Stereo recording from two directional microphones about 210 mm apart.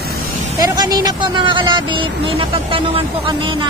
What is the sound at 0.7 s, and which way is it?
Speech, 20° right (ahead or behind).